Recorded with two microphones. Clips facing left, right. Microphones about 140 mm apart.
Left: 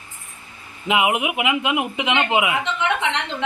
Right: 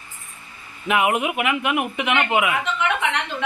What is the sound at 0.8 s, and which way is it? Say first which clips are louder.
A man's voice: even; 15° left (ahead or behind).